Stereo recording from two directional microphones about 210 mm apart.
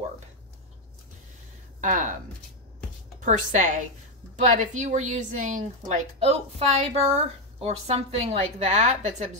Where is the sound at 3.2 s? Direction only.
35° right (ahead or behind).